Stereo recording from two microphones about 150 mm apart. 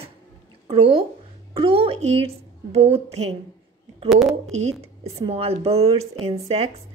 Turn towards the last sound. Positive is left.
turn(degrees=-45)  # may be behind; listen again after turning